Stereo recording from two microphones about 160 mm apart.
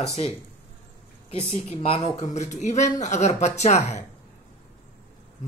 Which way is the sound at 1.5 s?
40° left (ahead or behind).